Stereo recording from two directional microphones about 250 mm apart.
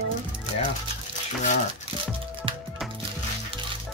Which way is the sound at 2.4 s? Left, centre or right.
Centre.